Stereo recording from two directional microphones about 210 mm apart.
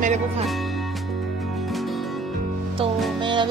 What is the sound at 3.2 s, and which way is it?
Music, 20° right (ahead or behind).